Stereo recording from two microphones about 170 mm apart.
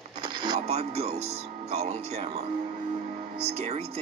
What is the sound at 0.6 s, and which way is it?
Speech, 40° right (ahead or behind).